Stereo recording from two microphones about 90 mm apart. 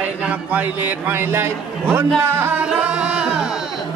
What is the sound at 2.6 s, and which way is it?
Music, 10° right (ahead or behind).